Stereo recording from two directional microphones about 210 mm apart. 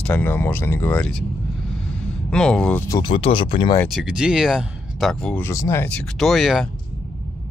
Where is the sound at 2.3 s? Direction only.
5° left (ahead or behind); by 3.8 s 25° left (ahead or behind).